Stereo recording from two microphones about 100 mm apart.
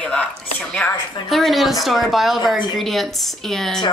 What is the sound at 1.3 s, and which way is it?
Speech, centre (ahead or behind).